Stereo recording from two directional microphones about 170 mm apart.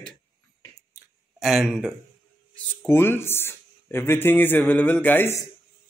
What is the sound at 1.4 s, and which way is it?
Speech, centre (ahead or behind).